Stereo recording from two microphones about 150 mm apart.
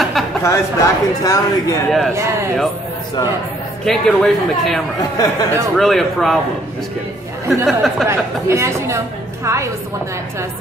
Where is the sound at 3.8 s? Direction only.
5° left (ahead or behind).